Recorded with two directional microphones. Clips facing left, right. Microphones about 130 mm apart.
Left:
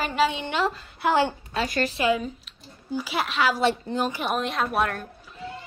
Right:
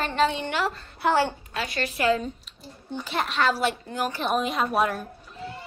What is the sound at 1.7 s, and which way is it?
Speech, 40° left (ahead or behind).